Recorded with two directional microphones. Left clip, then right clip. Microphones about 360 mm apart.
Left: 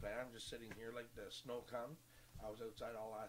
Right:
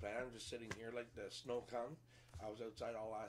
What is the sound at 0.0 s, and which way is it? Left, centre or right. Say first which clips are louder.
Speech: right 1 dB; centre.